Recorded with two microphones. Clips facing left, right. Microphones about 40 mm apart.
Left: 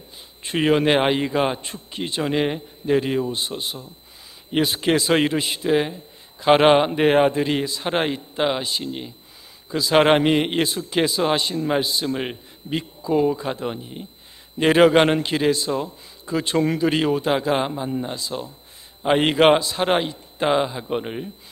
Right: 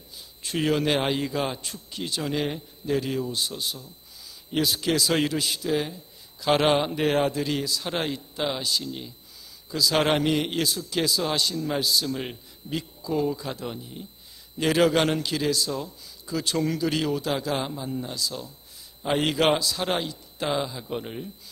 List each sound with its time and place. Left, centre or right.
0.4 s a man's voice: left